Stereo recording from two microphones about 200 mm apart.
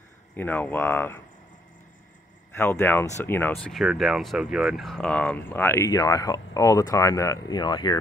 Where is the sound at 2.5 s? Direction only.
10° left (ahead or behind).